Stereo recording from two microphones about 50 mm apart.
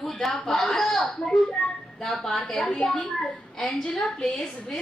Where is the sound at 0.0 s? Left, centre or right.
Centre.